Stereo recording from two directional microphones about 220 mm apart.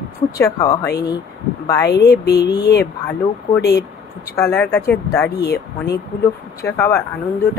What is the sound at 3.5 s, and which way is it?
Speech, 30° left (ahead or behind).